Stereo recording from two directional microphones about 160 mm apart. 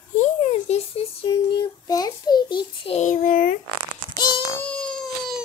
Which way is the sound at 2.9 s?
55° left (ahead or behind).